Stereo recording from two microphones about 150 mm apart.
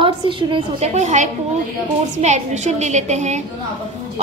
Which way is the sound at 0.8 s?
50° right (ahead or behind).